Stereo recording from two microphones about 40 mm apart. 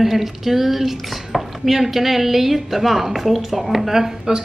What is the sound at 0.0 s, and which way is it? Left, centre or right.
Speech, centre.